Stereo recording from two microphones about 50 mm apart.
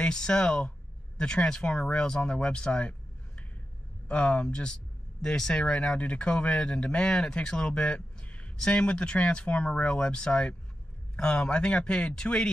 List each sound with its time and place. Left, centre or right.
0.0 s speech: centre
4.1 s speech: left